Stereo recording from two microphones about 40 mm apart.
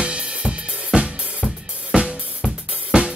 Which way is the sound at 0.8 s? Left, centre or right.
Right.